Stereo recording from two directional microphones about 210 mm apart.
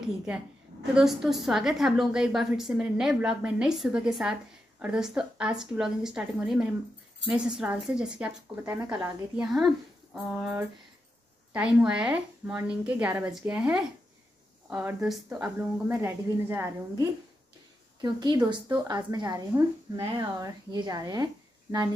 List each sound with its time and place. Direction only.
0.9 s a woman's voice: centre (ahead or behind); by 21.3 s 20° right (ahead or behind)